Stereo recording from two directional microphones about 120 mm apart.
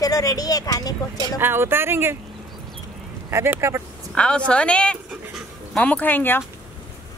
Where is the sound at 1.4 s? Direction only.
20° right (ahead or behind).